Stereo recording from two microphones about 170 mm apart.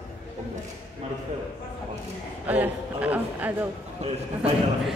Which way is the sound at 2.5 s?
10° right (ahead or behind).